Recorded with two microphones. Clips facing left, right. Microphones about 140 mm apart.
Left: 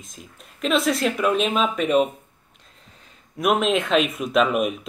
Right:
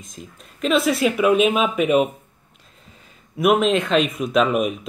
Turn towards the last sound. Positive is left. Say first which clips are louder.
# right 1 dB
turn(degrees=0)  # may be behind; listen again after turning